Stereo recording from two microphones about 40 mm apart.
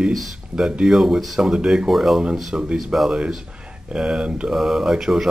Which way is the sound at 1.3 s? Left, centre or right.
Centre.